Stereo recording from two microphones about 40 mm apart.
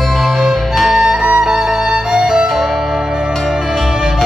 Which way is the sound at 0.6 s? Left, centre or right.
Centre.